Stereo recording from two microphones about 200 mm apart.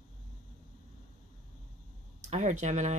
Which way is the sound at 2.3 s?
35° right (ahead or behind).